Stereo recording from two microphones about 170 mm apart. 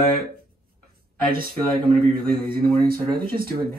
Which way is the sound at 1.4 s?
60° right (ahead or behind).